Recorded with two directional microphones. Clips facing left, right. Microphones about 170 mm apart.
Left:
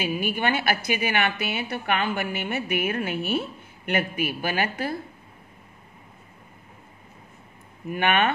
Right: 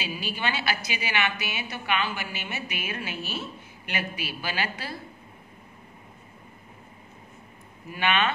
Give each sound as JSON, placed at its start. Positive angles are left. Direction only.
{"t": 0.0, "sound": "a woman's voice", "side_deg": 55}
{"t": 7.9, "sound": "a woman's voice", "side_deg": 50}